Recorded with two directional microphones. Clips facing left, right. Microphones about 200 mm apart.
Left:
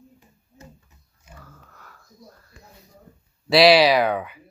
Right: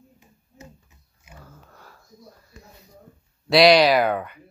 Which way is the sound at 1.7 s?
30° right (ahead or behind).